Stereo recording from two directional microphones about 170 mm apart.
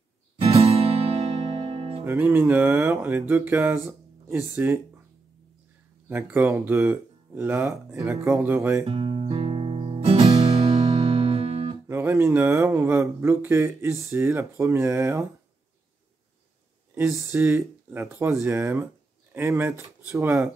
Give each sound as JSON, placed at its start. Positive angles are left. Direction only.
{"t": 0.4, "sound": "music", "side_deg": -35}
{"t": 2.0, "sound": "speech", "side_deg": -10}
{"t": 6.0, "sound": "speech", "side_deg": -10}
{"t": 8.8, "sound": "guitar", "side_deg": -35}
{"t": 11.9, "sound": "speech", "side_deg": -15}
{"t": 16.9, "sound": "speech", "side_deg": -15}